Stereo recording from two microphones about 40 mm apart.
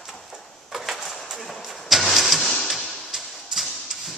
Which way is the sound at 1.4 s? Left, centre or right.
Centre.